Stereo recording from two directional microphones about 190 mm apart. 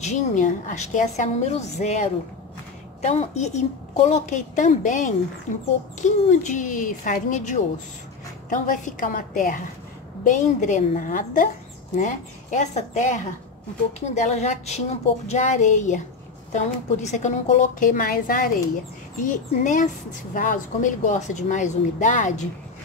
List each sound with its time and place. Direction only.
0.0 s a woman's voice: 40° left (ahead or behind)